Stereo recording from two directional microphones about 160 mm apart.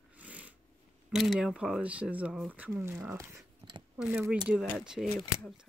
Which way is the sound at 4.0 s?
5° right (ahead or behind).